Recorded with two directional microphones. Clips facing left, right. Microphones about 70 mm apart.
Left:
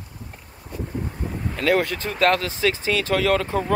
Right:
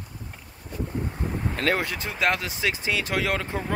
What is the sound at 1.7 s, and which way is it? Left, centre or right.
Speech, centre.